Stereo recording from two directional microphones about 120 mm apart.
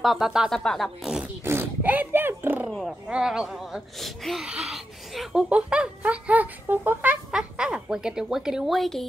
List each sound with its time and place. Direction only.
0.0 s speech: centre (ahead or behind)
1.2 s a sound: 20° right (ahead or behind)
3.1 s speech: 5° right (ahead or behind)